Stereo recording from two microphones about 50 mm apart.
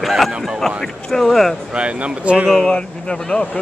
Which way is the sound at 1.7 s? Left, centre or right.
Right.